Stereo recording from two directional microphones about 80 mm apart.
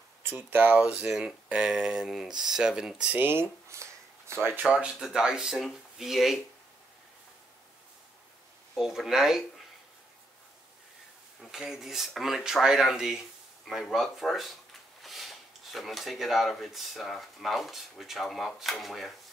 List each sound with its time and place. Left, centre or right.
0.2 s speech: right
0.7 s speech: centre
3.2 s speech: right
4.6 s speech: centre
8.7 s speech: centre
11.5 s speech: centre